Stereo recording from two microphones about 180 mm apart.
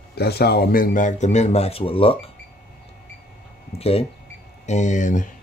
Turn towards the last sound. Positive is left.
turn(degrees=45)  # may be behind; listen again after turning